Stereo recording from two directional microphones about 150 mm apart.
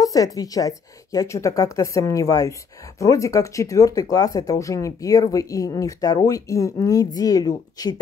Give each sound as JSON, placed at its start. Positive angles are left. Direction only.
{"t": 0.0, "sound": "speech", "side_deg": 25}